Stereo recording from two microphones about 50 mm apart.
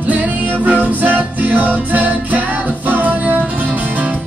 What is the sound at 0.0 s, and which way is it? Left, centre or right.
Music, right.